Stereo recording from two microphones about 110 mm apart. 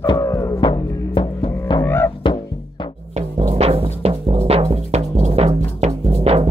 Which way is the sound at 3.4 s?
65° right (ahead or behind).